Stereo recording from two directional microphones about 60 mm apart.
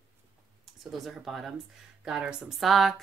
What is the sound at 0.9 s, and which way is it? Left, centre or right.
Speech, centre.